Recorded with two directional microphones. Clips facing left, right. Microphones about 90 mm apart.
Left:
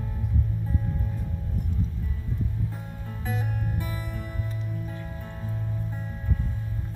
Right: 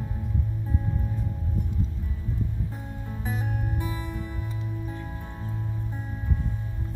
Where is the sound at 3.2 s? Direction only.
20° right (ahead or behind).